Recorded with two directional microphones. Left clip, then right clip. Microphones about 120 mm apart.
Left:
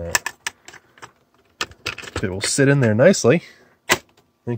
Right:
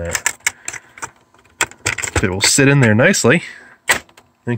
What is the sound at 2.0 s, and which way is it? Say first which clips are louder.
Speech: right 9 dB; centre (ahead or behind).